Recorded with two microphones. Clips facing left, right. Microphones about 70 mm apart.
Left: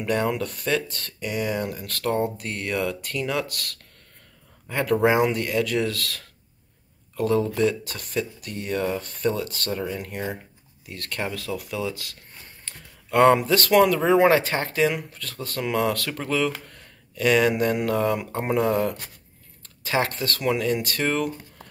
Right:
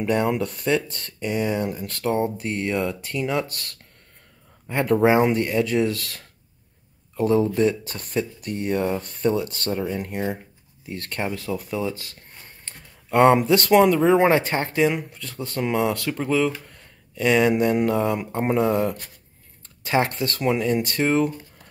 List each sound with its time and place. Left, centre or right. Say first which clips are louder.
0.0 s speech: right 2 dB; right
12.6 s a sound: even; right
13.7 s speech: right 1 dB; centre
17.1 s speech: right 1 dB; centre
19.9 s speech: right 2 dB; right